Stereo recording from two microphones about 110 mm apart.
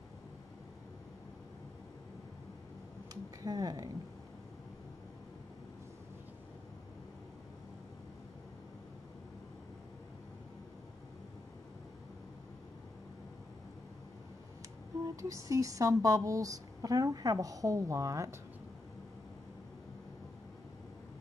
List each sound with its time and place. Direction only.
3.4 s speech: 35° right (ahead or behind)
15.0 s speech: 30° right (ahead or behind)